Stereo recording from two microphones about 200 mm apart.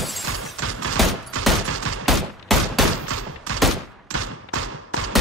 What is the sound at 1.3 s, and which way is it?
Fusillade, 85° right.